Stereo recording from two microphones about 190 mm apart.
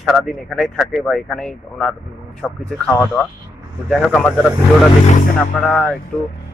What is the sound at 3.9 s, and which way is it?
Speech, centre (ahead or behind).